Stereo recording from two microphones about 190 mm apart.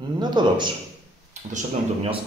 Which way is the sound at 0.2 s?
25° right (ahead or behind).